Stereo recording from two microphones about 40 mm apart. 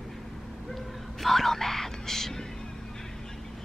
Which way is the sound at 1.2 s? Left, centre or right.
Centre.